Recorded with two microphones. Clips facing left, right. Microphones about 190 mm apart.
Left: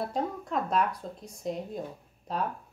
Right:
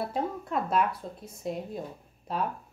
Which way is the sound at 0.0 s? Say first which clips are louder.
Even; 5° right (ahead or behind).